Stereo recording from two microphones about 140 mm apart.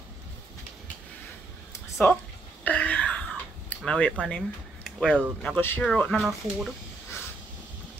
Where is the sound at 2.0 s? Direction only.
15° left (ahead or behind).